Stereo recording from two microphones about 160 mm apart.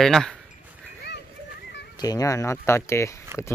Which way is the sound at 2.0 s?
20° left (ahead or behind).